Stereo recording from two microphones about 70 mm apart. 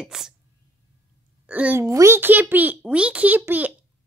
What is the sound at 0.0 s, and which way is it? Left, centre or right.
Speech, centre.